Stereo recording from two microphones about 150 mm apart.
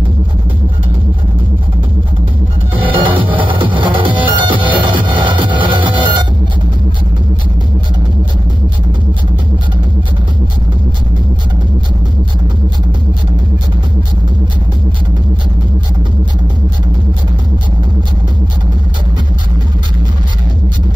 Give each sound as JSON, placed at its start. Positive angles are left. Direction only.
{"t": 2.9, "sound": "music", "side_deg": -35}